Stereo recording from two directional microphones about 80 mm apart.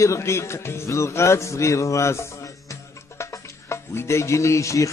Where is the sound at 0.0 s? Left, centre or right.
Left.